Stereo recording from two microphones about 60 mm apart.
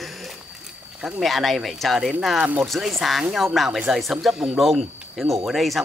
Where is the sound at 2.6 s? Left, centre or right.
Centre.